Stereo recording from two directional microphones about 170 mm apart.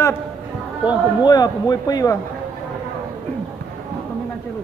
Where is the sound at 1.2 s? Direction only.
25° left (ahead or behind).